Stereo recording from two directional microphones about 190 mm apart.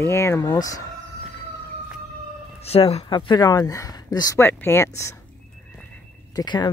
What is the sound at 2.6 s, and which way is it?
Speech, 30° left (ahead or behind).